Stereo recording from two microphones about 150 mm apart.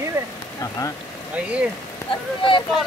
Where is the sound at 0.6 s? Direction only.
20° left (ahead or behind).